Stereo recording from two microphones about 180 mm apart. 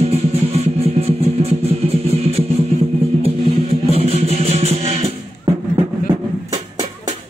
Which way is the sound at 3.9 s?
35° right (ahead or behind).